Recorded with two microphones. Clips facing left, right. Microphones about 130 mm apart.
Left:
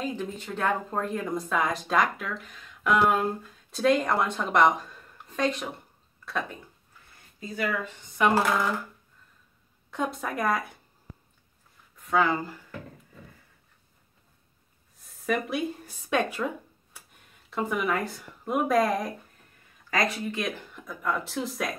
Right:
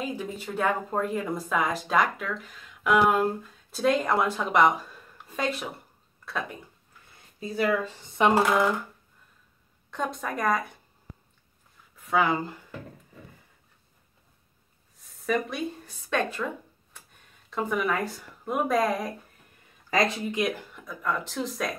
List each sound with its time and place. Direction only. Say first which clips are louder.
0.0 s a woman's voice: even; 10° right (ahead or behind)
7.5 s speech: right 4 dB; 35° right (ahead or behind)
8.2 s speech: right 2 dB; 20° right (ahead or behind)
9.8 s speech: left 1 dB; 5° left (ahead or behind)
12.1 s speech: even; 15° right (ahead or behind)
15.0 s speech: right 1 dB; centre (ahead or behind)
17.5 s speech: even; centre (ahead or behind)
19.9 s speech: right 2 dB; 20° right (ahead or behind)
20.7 s speech: even; centre (ahead or behind)